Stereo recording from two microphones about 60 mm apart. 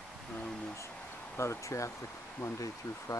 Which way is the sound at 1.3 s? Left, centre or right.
Left.